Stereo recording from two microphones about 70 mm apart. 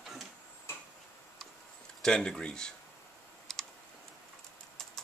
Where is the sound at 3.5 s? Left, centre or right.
Centre.